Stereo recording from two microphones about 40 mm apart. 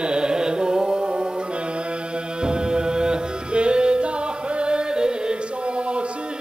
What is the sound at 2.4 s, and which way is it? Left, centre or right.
Music, right.